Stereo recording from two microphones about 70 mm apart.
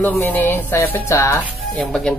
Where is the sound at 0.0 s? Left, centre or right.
Left.